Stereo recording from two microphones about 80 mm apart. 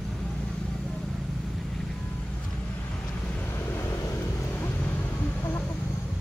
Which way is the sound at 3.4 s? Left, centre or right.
Left.